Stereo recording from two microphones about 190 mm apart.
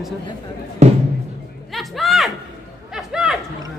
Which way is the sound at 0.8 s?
35° right (ahead or behind).